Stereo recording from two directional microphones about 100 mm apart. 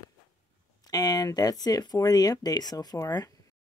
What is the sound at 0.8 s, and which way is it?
Speech, 40° left (ahead or behind).